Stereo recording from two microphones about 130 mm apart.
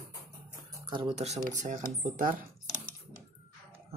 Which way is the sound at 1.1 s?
60° right (ahead or behind).